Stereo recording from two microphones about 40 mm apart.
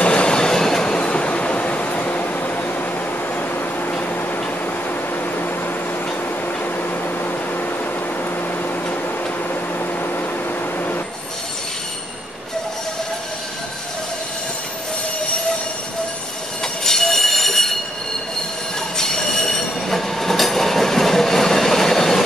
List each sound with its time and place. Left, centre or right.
0.0 s train: left
0.9 s a sound: left
6.6 s microwave oven: left
9.5 s microwave oven: left
16.6 s train: centre
18.9 s train: centre